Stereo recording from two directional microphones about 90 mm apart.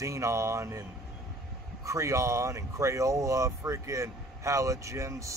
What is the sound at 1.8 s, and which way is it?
Speech, 35° right (ahead or behind).